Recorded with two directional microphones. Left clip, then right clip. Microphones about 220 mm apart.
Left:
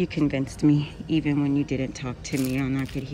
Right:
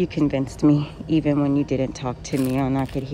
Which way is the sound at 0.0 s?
10° right (ahead or behind).